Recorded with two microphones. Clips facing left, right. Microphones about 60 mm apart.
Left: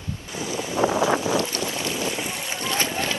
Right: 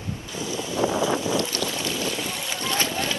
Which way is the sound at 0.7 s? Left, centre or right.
Left.